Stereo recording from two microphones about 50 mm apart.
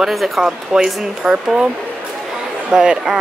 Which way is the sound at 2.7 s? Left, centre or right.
Centre.